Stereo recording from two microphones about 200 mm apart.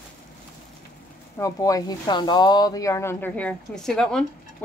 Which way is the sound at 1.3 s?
15° left (ahead or behind).